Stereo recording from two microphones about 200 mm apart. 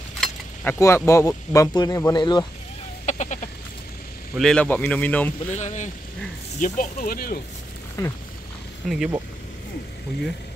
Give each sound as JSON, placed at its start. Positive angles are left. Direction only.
{"t": 0.2, "sound": "speech", "side_deg": 10}
{"t": 3.1, "sound": "a sound", "side_deg": 35}
{"t": 4.4, "sound": "speech", "side_deg": 5}
{"t": 5.5, "sound": "speech", "side_deg": 35}
{"t": 8.0, "sound": "speech", "side_deg": 15}
{"t": 8.8, "sound": "speech", "side_deg": 0}